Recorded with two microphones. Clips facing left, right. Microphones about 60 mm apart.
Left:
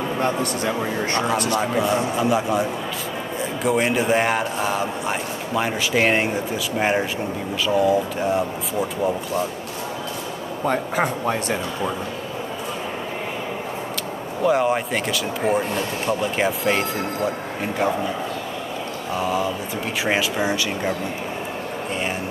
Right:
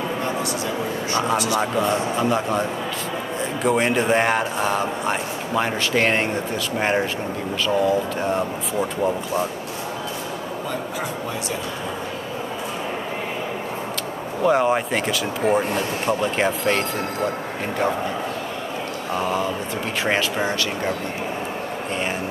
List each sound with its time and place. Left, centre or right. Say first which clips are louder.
0.2 s speech: left 2 dB; left
1.6 s a man's voice: even; centre
10.7 s speech: left 8 dB; left
14.4 s a man's voice: right 1 dB; centre
19.1 s a man's voice: even; centre